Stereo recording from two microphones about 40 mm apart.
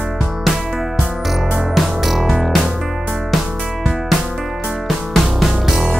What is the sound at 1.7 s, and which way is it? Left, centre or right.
Music, centre.